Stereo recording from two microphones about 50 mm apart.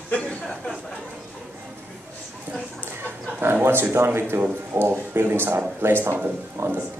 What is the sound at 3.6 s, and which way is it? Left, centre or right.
Speech, right.